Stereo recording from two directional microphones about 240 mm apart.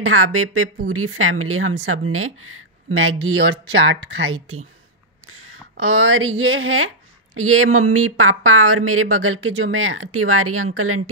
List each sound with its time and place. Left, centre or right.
0.0 s speech: right